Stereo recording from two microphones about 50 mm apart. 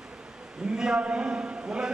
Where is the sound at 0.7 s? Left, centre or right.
Centre.